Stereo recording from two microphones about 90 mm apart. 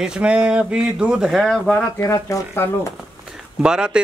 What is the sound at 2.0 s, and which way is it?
Speech, 35° left (ahead or behind).